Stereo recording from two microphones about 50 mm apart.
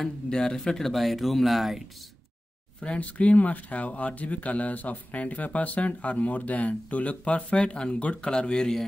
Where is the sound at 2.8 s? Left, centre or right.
Left.